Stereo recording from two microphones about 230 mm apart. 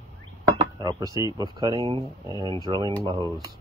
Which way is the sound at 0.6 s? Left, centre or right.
Centre.